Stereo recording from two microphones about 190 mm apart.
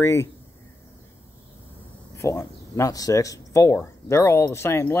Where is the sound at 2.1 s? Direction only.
15° left (ahead or behind).